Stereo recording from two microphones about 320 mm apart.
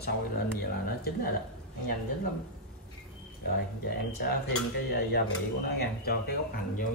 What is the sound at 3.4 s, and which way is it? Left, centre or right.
Speech, left.